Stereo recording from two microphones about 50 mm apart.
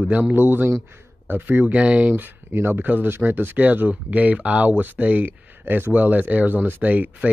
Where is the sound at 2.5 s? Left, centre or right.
Right.